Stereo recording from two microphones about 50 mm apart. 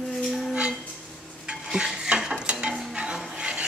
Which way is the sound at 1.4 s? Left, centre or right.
Centre.